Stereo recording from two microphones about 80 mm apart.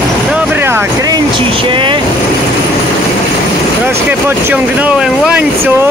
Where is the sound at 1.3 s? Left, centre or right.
Right.